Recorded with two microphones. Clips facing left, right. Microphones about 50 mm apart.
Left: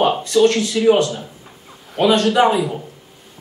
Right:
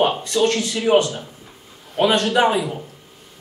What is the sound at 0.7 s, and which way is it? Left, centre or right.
Speech, centre.